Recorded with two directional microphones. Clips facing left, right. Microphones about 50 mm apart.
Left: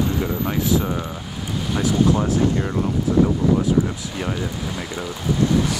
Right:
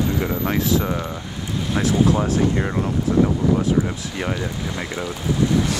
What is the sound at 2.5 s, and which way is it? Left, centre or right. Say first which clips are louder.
Speech: even; right.